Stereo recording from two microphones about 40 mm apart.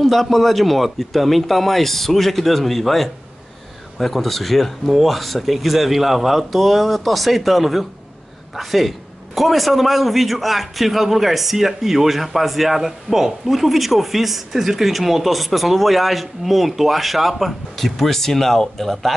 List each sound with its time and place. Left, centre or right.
0.0 s a man's voice: centre